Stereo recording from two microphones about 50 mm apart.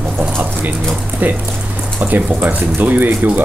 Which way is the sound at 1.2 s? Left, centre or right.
Right.